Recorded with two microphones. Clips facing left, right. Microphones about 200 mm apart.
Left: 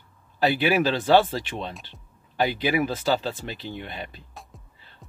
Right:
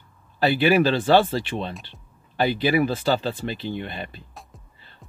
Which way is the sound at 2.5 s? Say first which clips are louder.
Right 3 dB; 10° left (ahead or behind).